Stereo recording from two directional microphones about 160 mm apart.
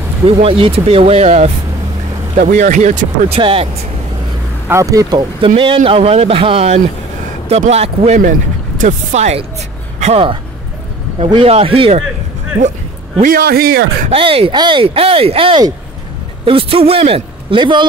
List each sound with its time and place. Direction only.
0.4 s speech: 35° right (ahead or behind)
3.3 s speech: 35° right (ahead or behind)
4.6 s speech: 20° right (ahead or behind)
5.9 s speech: 35° right (ahead or behind)
8.2 s speech: 55° right (ahead or behind); by 12.0 s 35° right (ahead or behind)
13.2 s speech: 65° right (ahead or behind)
14.1 s speech: 35° right (ahead or behind)